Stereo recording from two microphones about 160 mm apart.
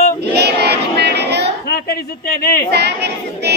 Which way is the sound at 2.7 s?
90° right.